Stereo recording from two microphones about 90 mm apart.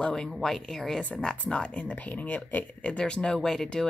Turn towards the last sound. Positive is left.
turn(degrees=5)  # may be behind; listen again after turning